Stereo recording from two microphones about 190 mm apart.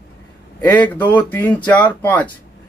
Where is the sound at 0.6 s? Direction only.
10° left (ahead or behind).